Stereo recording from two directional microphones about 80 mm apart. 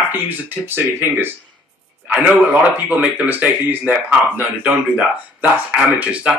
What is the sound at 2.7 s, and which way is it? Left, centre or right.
Speech, centre.